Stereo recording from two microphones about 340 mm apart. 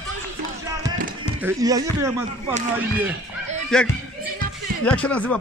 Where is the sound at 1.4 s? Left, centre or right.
Centre.